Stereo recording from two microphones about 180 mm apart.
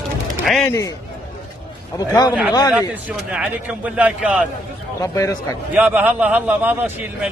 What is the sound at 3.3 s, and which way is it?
A man's voice, 5° right (ahead or behind).